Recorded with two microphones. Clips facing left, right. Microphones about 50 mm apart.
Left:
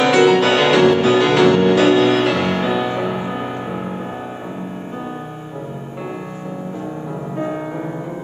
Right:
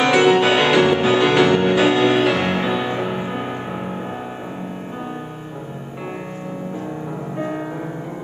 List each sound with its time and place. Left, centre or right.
0.0 s music: centre
7.3 s music: centre